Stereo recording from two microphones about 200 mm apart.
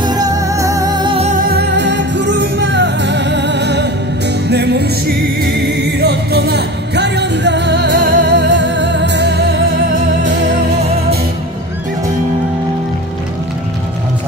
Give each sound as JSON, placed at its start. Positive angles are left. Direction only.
{"t": 0.0, "sound": "music", "side_deg": -20}
{"t": 1.5, "sound": "music", "side_deg": -55}